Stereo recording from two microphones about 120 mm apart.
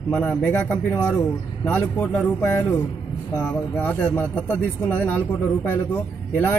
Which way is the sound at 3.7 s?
20° left (ahead or behind).